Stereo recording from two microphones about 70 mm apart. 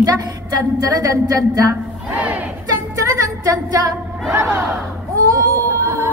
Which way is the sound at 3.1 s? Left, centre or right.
Right.